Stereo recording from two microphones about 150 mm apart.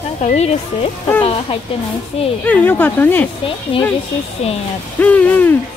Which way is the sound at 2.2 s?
40° left (ahead or behind).